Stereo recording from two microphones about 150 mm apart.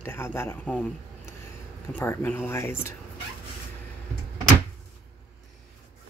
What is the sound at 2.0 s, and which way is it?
Speech, 15° left (ahead or behind).